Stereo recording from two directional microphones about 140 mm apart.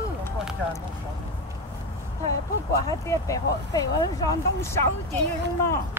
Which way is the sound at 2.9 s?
25° left (ahead or behind).